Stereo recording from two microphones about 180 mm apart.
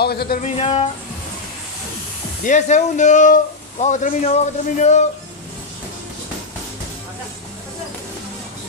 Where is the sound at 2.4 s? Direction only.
40° left (ahead or behind).